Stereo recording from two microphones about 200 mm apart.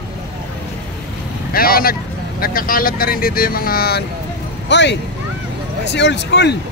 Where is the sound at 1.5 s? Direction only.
45° left (ahead or behind).